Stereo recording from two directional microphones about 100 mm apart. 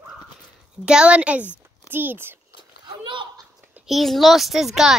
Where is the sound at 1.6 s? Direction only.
20° right (ahead or behind).